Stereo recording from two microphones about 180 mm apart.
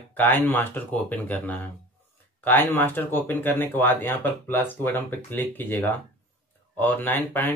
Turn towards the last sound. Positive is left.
turn(degrees=10)  # may be behind; listen again after turning